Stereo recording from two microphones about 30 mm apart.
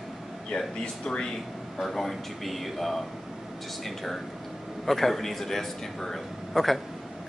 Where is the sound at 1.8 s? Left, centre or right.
Centre.